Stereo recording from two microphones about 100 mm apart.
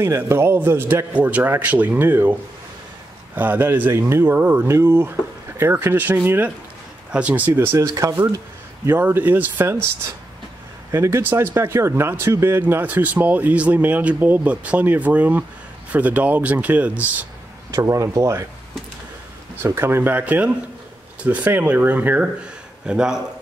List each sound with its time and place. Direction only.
0.0 s speech: 25° right (ahead or behind)
3.3 s speech: 20° right (ahead or behind)
8.8 s speech: 20° right (ahead or behind)
10.9 s speech: 30° right (ahead or behind)
17.6 s speech: 35° right (ahead or behind)
19.6 s speech: 25° right (ahead or behind); by 23.2 s 5° right (ahead or behind)